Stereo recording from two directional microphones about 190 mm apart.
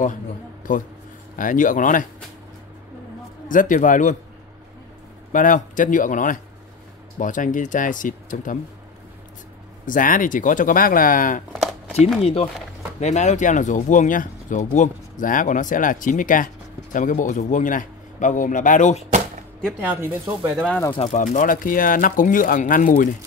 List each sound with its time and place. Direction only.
0.7 s a man's voice: 45° left (ahead or behind)
3.4 s a man's voice: 45° left (ahead or behind)
5.3 s a man's voice: 45° left (ahead or behind)
9.8 s a man's voice: 45° left (ahead or behind)
12.2 s a man's voice: 30° left (ahead or behind)
19.8 s speech: 10° right (ahead or behind)
20.9 s a man's voice: 35° left (ahead or behind)